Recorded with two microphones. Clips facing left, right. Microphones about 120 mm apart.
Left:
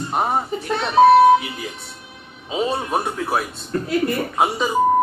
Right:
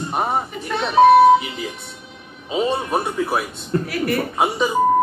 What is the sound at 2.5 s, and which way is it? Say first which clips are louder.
Speech: right 1 dB; centre (ahead or behind).